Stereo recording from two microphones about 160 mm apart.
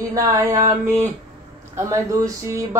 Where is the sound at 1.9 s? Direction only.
20° right (ahead or behind).